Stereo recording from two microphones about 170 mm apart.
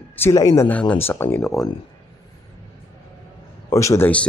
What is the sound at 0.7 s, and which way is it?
Speech, 10° left (ahead or behind).